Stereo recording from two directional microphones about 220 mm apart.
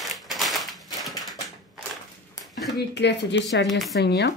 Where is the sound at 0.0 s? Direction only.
Centre (ahead or behind).